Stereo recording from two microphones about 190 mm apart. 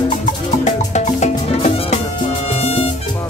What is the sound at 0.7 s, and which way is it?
Music, 35° left (ahead or behind).